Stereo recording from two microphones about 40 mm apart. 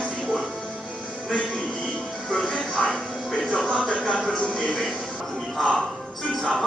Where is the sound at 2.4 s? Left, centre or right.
Centre.